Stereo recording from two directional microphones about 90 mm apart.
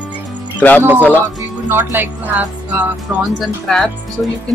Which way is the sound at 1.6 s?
20° right (ahead or behind).